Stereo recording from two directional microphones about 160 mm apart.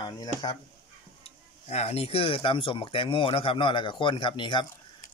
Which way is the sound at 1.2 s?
40° left (ahead or behind).